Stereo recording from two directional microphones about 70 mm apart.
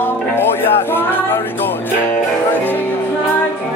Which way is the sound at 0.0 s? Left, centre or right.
Left.